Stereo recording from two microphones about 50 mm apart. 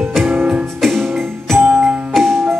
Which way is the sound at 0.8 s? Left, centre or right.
Centre.